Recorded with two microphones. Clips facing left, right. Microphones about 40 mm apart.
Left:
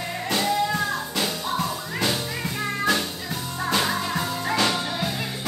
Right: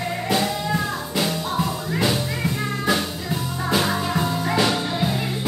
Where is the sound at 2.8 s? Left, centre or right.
Centre.